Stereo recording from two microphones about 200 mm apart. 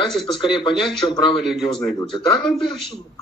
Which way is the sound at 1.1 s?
25° left (ahead or behind).